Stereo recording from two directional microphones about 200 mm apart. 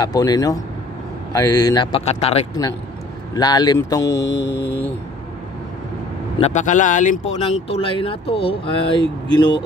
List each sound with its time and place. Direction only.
0.0 s speech: 20° left (ahead or behind)
3.3 s speech: 20° left (ahead or behind)
4.2 s mantra: 60° left (ahead or behind)
6.3 s speech: 35° left (ahead or behind)